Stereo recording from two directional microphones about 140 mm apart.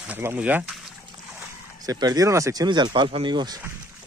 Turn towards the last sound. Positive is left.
turn(degrees=-35)  # may be behind; listen again after turning